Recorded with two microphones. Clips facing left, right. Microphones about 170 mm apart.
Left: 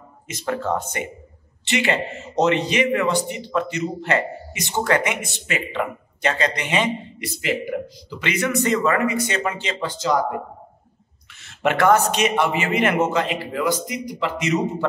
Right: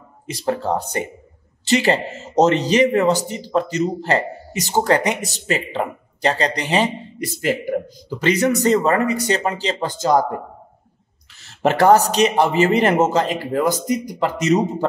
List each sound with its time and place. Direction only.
0.3 s speech: 35° right (ahead or behind)
11.4 s speech: 35° right (ahead or behind)